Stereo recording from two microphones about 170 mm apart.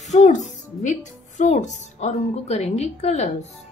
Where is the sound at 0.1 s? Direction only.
45° left (ahead or behind).